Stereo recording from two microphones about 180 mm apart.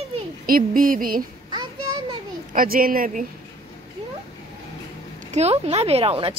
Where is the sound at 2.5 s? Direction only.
50° right (ahead or behind).